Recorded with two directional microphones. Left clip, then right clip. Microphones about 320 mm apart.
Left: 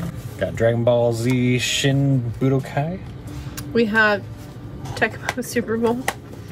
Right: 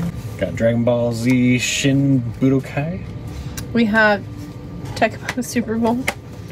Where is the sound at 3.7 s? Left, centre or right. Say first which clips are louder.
Right 2 dB; centre.